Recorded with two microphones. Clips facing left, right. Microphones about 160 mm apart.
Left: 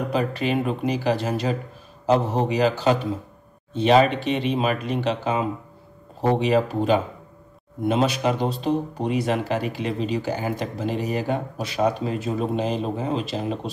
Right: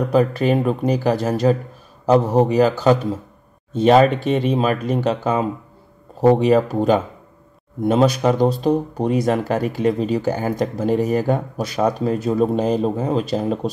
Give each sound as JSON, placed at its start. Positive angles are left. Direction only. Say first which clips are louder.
{"t": 0.1, "sound": "speech", "louder": "right 7 dB", "side_deg": -45}
{"t": 6.4, "sound": "speech", "louder": "right 5 dB", "side_deg": -45}